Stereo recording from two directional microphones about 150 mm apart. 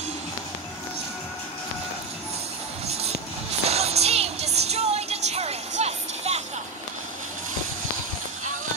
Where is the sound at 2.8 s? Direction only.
45° right (ahead or behind).